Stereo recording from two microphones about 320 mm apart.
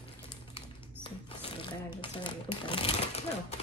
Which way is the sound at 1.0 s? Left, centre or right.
Centre.